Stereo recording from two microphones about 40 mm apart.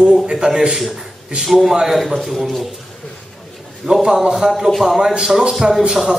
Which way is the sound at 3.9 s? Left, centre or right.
Right.